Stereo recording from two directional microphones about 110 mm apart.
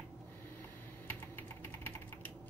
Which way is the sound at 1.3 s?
20° left (ahead or behind).